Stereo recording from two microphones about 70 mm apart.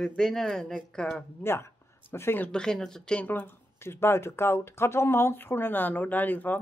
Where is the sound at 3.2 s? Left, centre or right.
Left.